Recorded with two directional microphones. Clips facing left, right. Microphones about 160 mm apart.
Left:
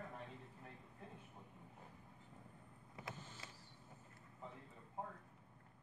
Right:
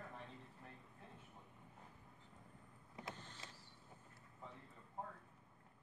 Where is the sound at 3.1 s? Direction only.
10° left (ahead or behind).